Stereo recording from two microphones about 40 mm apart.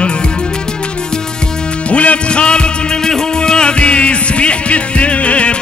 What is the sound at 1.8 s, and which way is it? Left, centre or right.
Music, left.